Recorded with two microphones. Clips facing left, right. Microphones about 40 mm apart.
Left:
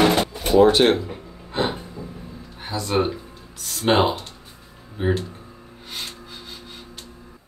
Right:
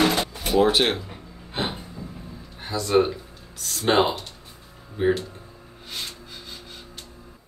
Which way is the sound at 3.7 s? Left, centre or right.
Centre.